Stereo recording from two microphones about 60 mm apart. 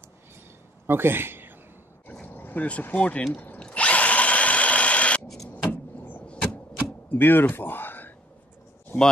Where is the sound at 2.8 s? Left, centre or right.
Left.